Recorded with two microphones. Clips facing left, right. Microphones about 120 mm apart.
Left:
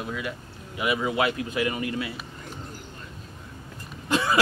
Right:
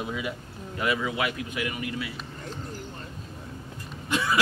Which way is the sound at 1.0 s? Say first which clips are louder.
Left 4 dB; 30° left (ahead or behind).